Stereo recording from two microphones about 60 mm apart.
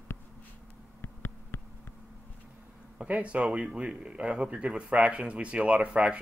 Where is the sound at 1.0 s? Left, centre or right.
Left.